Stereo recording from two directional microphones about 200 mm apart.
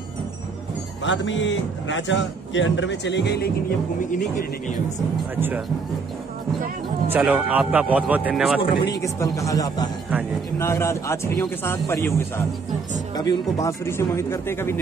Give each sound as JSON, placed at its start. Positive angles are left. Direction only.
{"t": 1.0, "sound": "a man's voice", "side_deg": 65}
{"t": 5.3, "sound": "speech", "side_deg": -10}
{"t": 7.1, "sound": "speech", "side_deg": -5}
{"t": 8.5, "sound": "speech", "side_deg": 20}
{"t": 13.1, "sound": "speech", "side_deg": 20}